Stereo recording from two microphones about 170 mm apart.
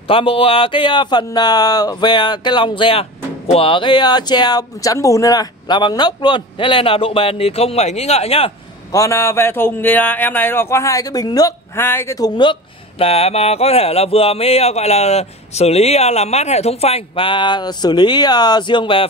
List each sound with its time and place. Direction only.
0.1 s speech: 30° left (ahead or behind)
8.9 s speech: 20° left (ahead or behind)
13.0 s speech: 35° left (ahead or behind)